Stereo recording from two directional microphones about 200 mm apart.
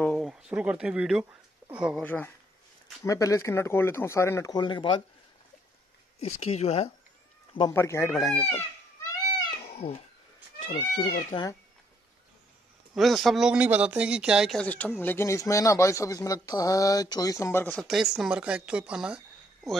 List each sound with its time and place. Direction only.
0.0 s speech: centre (ahead or behind)
2.0 s speech: 10° left (ahead or behind)
6.1 s speech: 30° left (ahead or behind)
7.7 s speech: 15° left (ahead or behind)
9.6 s cat: 30° left (ahead or behind)
10.6 s speech: 35° left (ahead or behind)
12.9 s speech: centre (ahead or behind)
17.8 s speech: centre (ahead or behind)